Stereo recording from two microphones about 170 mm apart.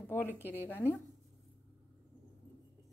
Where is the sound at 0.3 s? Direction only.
10° right (ahead or behind).